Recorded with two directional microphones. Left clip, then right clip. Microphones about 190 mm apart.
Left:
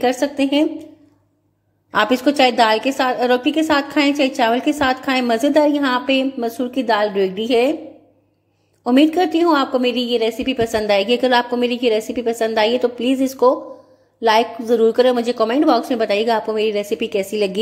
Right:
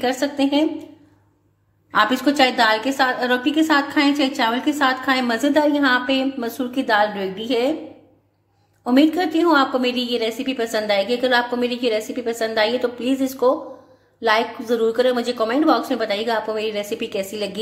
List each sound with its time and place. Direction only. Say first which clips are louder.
0.0 s a woman's voice: left 3 dB; 25° left (ahead or behind)
1.9 s a woman's voice: left 1 dB; 25° left (ahead or behind)
8.8 s a woman's voice: left 3 dB; 25° left (ahead or behind)